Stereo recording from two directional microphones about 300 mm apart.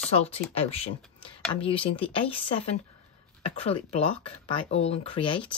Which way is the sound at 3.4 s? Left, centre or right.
Centre.